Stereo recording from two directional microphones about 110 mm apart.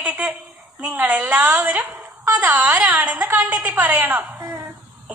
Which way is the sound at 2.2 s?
30° right (ahead or behind).